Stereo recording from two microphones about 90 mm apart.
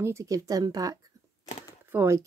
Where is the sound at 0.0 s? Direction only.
35° right (ahead or behind).